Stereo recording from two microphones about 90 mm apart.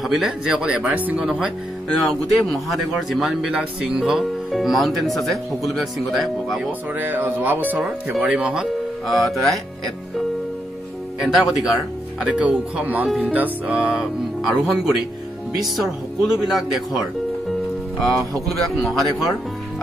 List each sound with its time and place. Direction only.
0.0 s speech: centre (ahead or behind)
1.9 s speech: 5° left (ahead or behind)
4.0 s speech: centre (ahead or behind)
7.0 s speech: 20° right (ahead or behind)
9.0 s speech: centre (ahead or behind)
11.1 s speech: 5° right (ahead or behind)
18.8 s speech: centre (ahead or behind)